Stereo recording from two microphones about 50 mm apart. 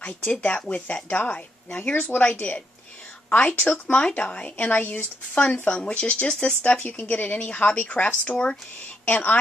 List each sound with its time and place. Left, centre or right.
0.0 s a woman's voice: left
1.7 s speech: left
3.3 s speech: left
6.6 s speech: left
9.0 s a woman's voice: left